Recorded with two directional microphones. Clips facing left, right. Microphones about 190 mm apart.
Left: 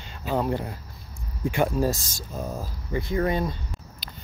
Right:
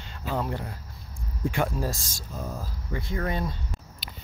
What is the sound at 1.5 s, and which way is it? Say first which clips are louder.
Speech: left 6 dB; 20° left (ahead or behind).